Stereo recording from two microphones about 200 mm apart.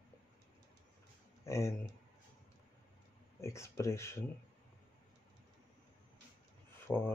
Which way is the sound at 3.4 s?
15° left (ahead or behind).